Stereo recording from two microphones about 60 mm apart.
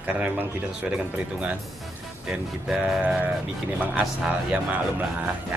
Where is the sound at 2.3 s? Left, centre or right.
Centre.